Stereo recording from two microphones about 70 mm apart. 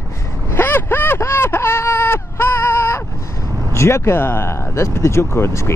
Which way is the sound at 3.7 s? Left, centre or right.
Left.